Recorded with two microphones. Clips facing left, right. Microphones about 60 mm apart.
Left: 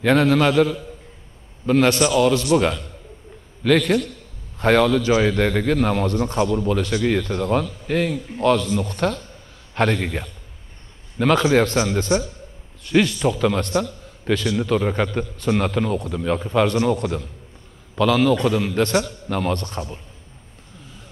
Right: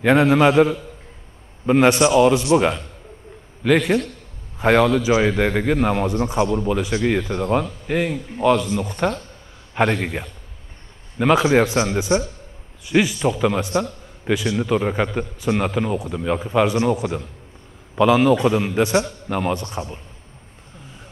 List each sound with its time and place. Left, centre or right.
0.0 s a man's voice: centre
3.6 s a man's voice: centre